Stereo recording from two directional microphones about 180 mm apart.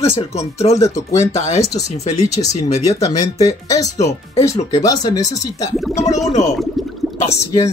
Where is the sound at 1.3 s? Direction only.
40° left (ahead or behind).